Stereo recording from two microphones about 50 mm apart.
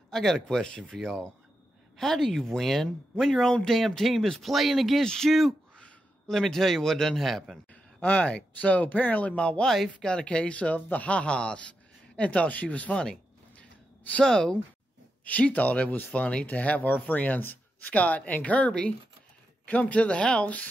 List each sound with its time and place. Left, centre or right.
0.1 s speech: centre
5.0 s speech: centre
7.7 s speech: left
13.0 s a sound: centre
14.2 s speech: centre
15.2 s speech: left
18.7 s speech: centre
19.6 s speech: left